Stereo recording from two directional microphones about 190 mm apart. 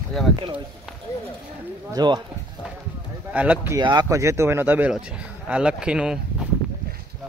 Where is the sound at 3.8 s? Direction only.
20° right (ahead or behind); by 6.5 s 5° right (ahead or behind).